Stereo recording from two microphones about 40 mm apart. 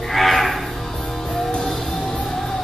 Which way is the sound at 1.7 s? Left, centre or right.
Centre.